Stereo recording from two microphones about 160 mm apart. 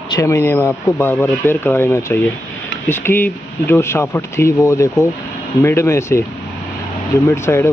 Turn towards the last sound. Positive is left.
turn(degrees=15)  # may be behind; listen again after turning